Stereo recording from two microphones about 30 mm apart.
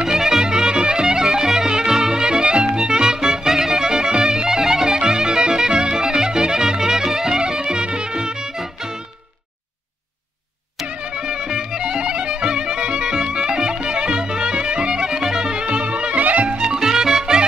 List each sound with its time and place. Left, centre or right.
0.0 s music: centre
0.5 s music: right
10.9 s music: right
11.1 s music: right
15.6 s music: right
16.2 s music: right
16.7 s music: centre